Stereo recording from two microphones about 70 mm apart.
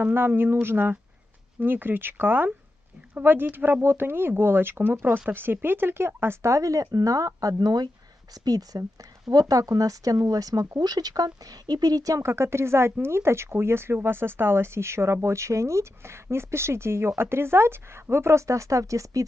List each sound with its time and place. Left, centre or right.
0.0 s speech: right
6.5 s speech: right
8.5 s speech: right
12.2 s speech: right